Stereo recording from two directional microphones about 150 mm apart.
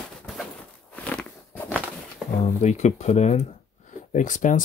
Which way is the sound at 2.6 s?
50° left (ahead or behind).